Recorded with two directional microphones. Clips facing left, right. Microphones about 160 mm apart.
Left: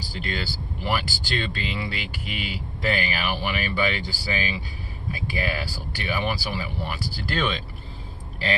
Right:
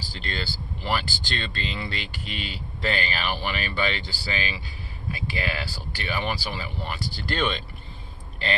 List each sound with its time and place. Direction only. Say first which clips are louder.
0.1 s speech: left 2 dB; 10° left (ahead or behind)